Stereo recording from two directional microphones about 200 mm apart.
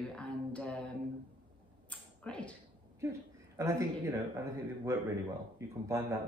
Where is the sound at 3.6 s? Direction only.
15° right (ahead or behind).